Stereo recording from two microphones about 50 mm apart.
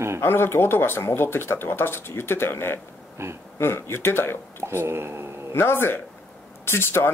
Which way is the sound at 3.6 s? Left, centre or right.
Left.